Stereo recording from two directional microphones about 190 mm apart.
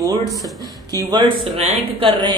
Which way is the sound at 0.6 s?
20° right (ahead or behind).